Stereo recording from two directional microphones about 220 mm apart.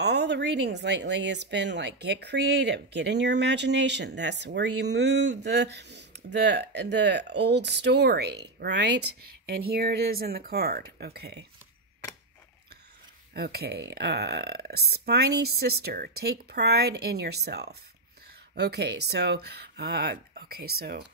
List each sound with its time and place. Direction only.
0.0 s speech: 50° right (ahead or behind)
13.3 s speech: 45° right (ahead or behind)